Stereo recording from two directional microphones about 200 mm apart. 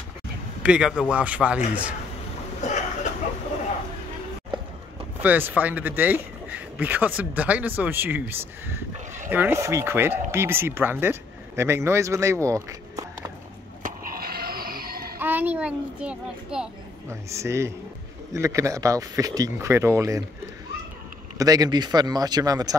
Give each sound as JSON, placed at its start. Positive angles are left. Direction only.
{"t": 0.6, "sound": "a man's voice", "side_deg": -5}
{"t": 2.6, "sound": "a sound", "side_deg": 35}
{"t": 5.2, "sound": "speech", "side_deg": -10}
{"t": 13.8, "sound": "skateboard", "side_deg": -50}
{"t": 15.1, "sound": "a child's voice", "side_deg": -10}
{"t": 21.4, "sound": "speech", "side_deg": -20}